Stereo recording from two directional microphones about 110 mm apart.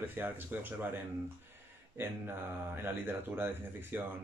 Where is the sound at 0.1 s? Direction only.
15° right (ahead or behind).